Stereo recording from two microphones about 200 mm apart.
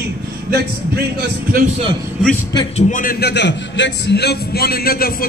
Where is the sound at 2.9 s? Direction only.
45° left (ahead or behind).